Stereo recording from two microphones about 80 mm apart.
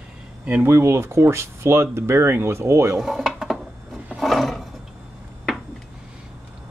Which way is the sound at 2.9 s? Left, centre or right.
Centre.